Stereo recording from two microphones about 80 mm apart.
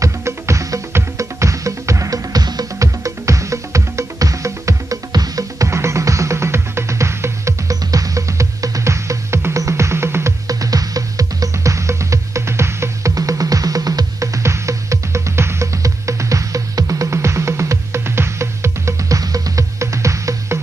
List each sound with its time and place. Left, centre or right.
0.0 s music: right
10.4 s music: right
13.1 s music: right